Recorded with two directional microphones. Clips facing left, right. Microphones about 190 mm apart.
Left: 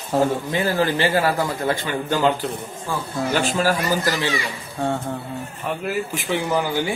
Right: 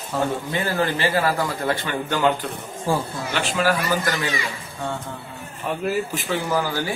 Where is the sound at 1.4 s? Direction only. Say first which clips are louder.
Left 1 dB; 15° left (ahead or behind).